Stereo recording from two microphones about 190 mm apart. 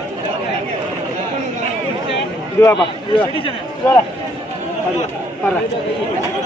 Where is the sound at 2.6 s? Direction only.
20° left (ahead or behind).